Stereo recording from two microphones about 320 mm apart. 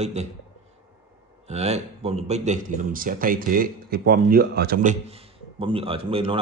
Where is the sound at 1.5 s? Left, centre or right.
Centre.